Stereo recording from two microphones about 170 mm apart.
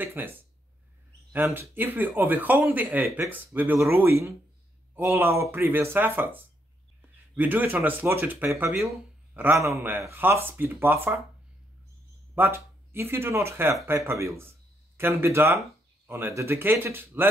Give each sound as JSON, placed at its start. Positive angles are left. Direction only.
{"t": 0.0, "sound": "speech", "side_deg": -10}
{"t": 1.3, "sound": "speech", "side_deg": -10}
{"t": 12.4, "sound": "speech", "side_deg": -15}